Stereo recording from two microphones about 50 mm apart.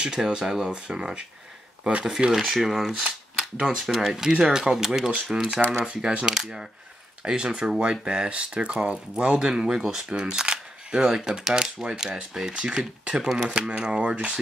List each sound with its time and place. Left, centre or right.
0.0 s speech: centre